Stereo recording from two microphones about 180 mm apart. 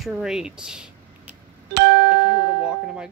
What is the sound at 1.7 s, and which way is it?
Music, 75° right (ahead or behind).